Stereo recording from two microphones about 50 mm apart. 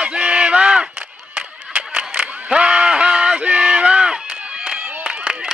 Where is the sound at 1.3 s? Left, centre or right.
Right.